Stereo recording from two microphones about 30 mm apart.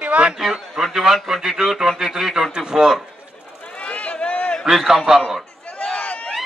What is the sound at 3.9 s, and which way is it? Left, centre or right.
Run, left.